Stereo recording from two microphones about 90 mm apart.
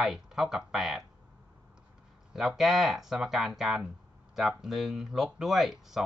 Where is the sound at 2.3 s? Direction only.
5° right (ahead or behind).